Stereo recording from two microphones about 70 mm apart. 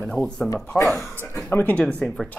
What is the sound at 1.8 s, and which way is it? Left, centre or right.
Speech, centre.